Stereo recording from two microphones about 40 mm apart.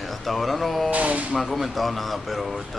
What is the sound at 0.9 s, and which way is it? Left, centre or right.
Speech, right.